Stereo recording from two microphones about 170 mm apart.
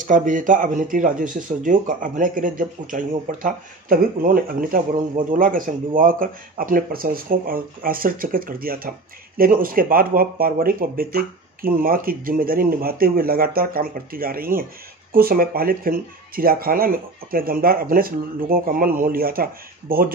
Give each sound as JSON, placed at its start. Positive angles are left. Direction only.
{"t": 0.0, "sound": "speech", "side_deg": -50}